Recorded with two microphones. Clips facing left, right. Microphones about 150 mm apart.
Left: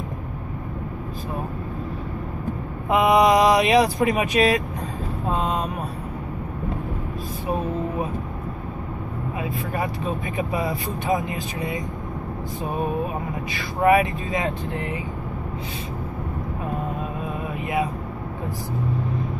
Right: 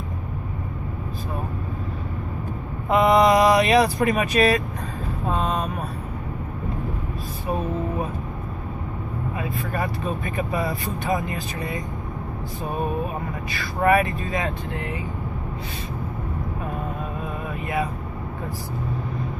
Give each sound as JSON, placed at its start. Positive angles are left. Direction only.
{"t": 2.9, "sound": "speech", "side_deg": 15}
{"t": 5.3, "sound": "vehicle", "side_deg": 20}
{"t": 9.4, "sound": "speech", "side_deg": 15}
{"t": 13.5, "sound": "speech", "side_deg": 15}